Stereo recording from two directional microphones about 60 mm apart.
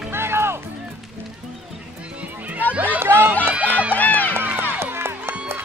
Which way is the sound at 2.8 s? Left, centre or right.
Right.